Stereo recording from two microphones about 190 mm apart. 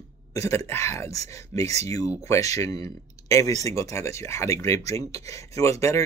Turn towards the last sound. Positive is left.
turn(degrees=15)  # may be behind; listen again after turning